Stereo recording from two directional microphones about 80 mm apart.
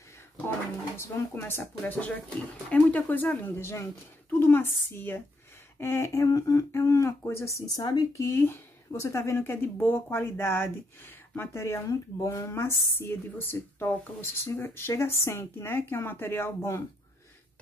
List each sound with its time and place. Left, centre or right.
0.9 s speech: left
1.9 s speech: centre; by 9.4 s left
9.4 s speech: left